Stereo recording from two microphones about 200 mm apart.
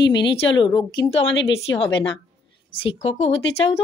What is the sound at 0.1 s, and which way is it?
Speech, 60° left (ahead or behind).